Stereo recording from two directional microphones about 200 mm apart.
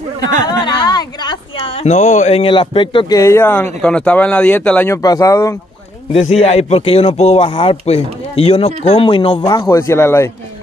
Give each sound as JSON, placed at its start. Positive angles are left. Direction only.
{"t": 0.5, "sound": "a sound", "side_deg": 20}
{"t": 1.9, "sound": "speech", "side_deg": 35}
{"t": 6.1, "sound": "a man's voice", "side_deg": 30}